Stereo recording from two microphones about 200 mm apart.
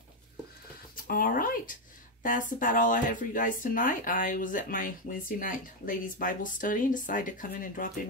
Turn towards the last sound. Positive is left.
turn(degrees=45)  # may be behind; listen again after turning